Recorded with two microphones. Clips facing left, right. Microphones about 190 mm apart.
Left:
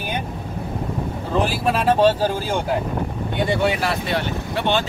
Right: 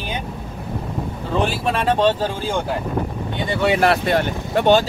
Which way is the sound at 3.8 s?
50° right (ahead or behind).